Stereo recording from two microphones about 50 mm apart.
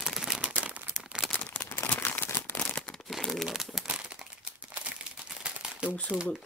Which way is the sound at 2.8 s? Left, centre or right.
Centre.